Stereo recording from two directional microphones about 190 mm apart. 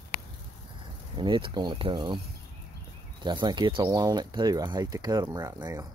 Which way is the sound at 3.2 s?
25° right (ahead or behind).